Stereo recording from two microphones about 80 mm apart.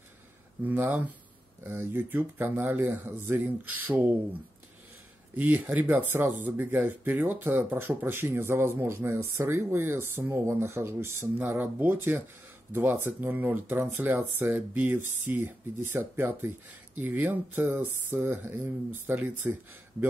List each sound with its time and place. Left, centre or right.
0.7 s speech: right
14.1 s speech: right
14.7 s speech: right